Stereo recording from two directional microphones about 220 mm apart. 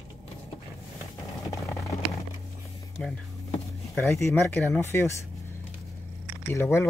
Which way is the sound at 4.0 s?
10° left (ahead or behind).